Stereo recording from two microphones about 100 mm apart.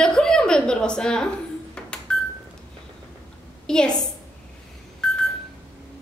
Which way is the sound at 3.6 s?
10° left (ahead or behind).